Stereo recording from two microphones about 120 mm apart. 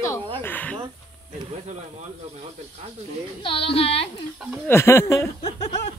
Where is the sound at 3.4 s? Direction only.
50° left (ahead or behind).